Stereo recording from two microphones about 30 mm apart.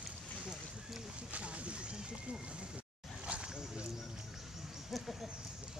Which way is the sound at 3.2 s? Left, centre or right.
Right.